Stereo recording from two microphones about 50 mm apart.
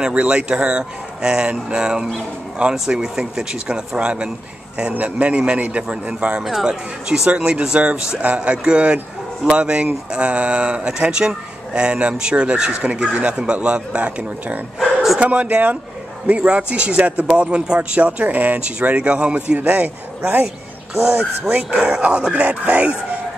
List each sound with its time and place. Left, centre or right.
0.0 s a man's voice: right
6.6 s speech: centre; by 20.4 s right
20.4 s music: centre
21.5 s speech: right